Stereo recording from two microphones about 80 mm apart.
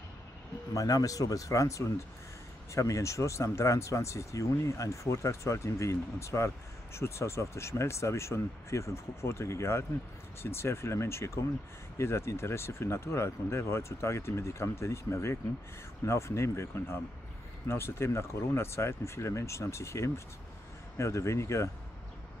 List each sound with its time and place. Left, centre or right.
0.7 s speech: left